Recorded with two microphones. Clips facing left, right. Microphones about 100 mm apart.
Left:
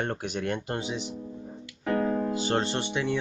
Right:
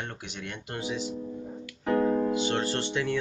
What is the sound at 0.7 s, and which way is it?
Speech, 25° left (ahead or behind).